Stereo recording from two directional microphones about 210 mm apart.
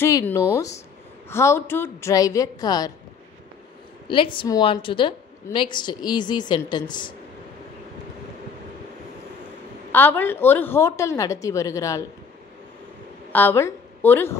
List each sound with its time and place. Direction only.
0.0 s a woman's voice: 10° left (ahead or behind)
4.1 s a woman's voice: 25° left (ahead or behind)
9.9 s a woman's voice: 10° left (ahead or behind)
13.3 s a woman's voice: 10° left (ahead or behind)